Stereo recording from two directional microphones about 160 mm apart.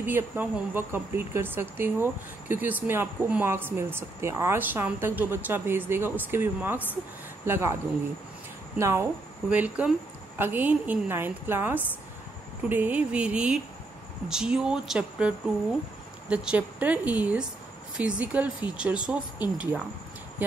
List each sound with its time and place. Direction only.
0.0 s speech: 15° right (ahead or behind)
8.7 s speech: 15° right (ahead or behind)